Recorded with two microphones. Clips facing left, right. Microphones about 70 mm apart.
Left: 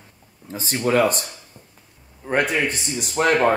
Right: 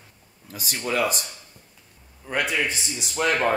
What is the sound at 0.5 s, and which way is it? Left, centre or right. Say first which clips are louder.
Speech: left 7 dB; left.